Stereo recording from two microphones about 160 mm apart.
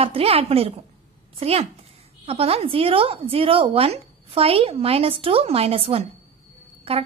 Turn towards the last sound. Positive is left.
turn(degrees=-40)  # may be behind; listen again after turning